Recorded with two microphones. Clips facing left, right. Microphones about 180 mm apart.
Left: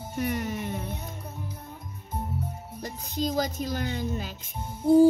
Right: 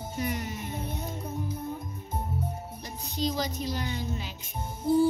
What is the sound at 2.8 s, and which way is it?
Speech, 45° left (ahead or behind).